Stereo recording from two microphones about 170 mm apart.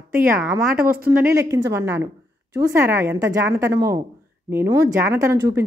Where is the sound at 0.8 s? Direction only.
60° right (ahead or behind).